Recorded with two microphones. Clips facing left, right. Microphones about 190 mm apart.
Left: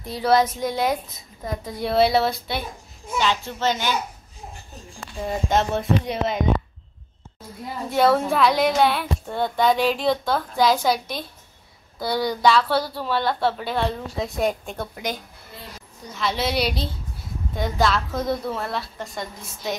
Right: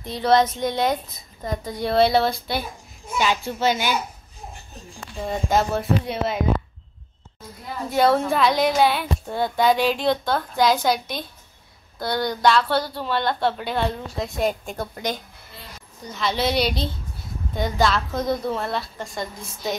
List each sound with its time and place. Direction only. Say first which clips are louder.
0.0 s a woman's voice: right 1 dB; 5° left (ahead or behind)
3.2 s a child's voice: right 1 dB; 10° right (ahead or behind)
5.2 s a woman's voice: even; centre (ahead or behind)
7.9 s a woman's voice: even; centre (ahead or behind)